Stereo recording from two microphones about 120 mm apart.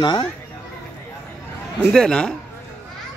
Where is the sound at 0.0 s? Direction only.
35° left (ahead or behind).